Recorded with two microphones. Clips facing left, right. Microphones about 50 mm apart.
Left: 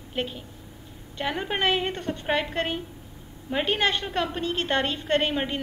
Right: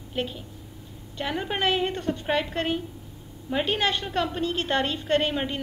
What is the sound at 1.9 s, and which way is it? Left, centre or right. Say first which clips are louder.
Speech: right 2 dB; left.